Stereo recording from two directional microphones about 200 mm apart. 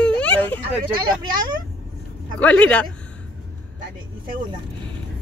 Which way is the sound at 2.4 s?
5° left (ahead or behind).